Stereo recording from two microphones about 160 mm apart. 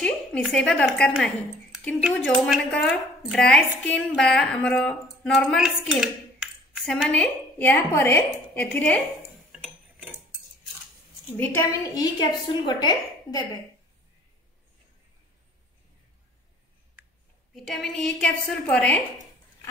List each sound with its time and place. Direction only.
0.0 s a woman's voice: 5° left (ahead or behind)
11.3 s a woman's voice: 10° left (ahead or behind)
11.8 s a woman's voice: 25° left (ahead or behind)
17.6 s speech: centre (ahead or behind)